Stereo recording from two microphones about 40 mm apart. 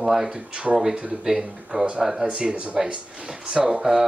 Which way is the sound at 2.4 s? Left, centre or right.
Right.